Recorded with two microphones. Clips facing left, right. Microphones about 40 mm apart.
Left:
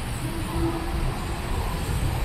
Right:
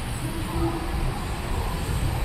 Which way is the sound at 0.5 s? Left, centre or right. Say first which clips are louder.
Even; centre.